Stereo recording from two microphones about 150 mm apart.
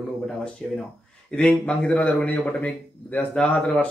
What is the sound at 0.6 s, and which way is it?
Speech, 5° left (ahead or behind).